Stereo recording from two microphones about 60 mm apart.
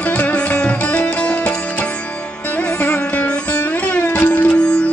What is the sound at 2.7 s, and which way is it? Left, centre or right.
Music, left.